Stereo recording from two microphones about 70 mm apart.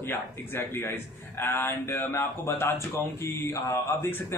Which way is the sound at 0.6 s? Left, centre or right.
Left.